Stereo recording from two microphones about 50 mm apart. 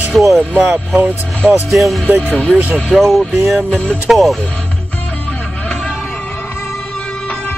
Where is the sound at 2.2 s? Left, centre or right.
Left.